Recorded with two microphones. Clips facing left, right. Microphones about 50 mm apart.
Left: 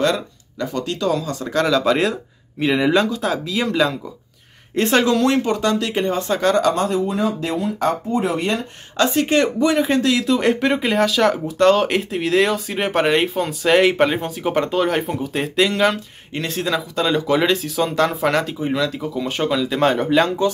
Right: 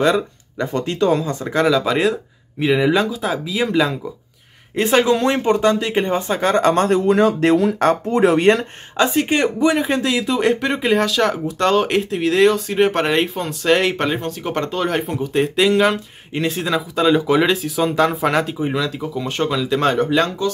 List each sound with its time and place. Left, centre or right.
0.0 s speech: centre
0.7 s speech: right
1.7 s speech: centre
6.7 s speech: right
7.8 s speech: right
8.9 s speech: centre